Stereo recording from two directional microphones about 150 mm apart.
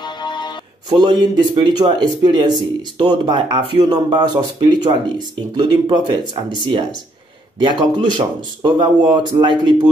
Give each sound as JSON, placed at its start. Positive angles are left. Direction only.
{"t": 0.0, "sound": "music", "side_deg": 30}
{"t": 0.8, "sound": "speech", "side_deg": -30}